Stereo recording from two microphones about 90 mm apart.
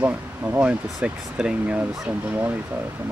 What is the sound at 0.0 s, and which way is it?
Speech, 20° right (ahead or behind).